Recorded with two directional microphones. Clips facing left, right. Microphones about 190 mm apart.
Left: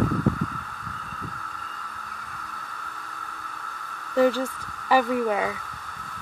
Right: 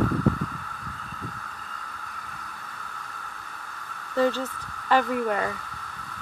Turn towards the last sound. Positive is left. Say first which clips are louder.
# left 2 dB
turn(degrees=5)  # may be behind; listen again after turning